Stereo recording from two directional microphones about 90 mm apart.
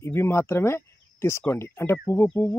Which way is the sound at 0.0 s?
30° left (ahead or behind).